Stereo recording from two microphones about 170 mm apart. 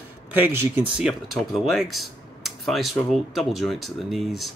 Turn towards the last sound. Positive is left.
turn(degrees=0)  # may be behind; listen again after turning